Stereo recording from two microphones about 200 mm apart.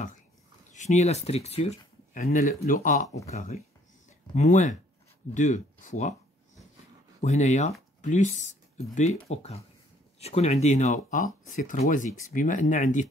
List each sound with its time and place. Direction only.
0.7 s speech: 35° left (ahead or behind)
2.2 s speech: 45° left (ahead or behind)
7.2 s speech: 35° left (ahead or behind)